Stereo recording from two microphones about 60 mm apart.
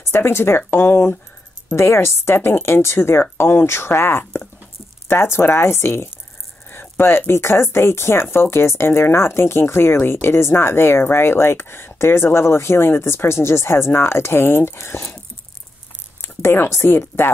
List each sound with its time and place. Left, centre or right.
0.0 s speech: left
16.2 s speech: left